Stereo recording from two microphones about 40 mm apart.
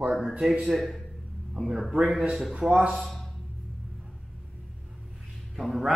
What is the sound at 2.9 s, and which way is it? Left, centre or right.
Speech, centre.